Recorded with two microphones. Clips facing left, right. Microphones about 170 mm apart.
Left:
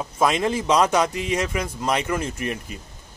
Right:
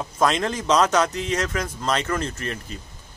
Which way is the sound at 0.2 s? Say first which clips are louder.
Left 1 dB; 10° left (ahead or behind).